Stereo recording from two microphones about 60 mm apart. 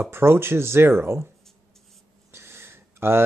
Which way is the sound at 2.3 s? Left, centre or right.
Right.